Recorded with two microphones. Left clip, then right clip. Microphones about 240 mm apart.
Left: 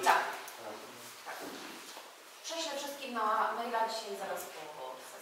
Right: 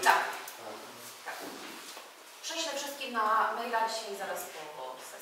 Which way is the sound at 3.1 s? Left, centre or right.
Centre.